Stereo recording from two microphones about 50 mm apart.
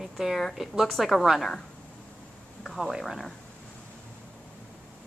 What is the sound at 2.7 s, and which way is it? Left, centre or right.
Speech, centre.